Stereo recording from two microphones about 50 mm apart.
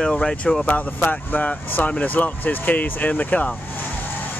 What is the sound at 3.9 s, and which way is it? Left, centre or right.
Vehicle, left.